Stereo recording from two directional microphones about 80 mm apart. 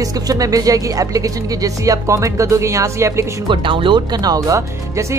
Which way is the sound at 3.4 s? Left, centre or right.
Right.